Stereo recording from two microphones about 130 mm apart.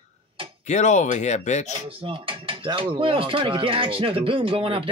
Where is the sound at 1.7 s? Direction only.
45° right (ahead or behind).